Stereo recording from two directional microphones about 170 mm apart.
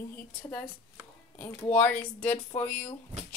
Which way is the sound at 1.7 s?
10° left (ahead or behind).